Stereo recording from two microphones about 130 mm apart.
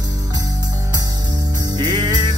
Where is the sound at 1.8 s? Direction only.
35° right (ahead or behind).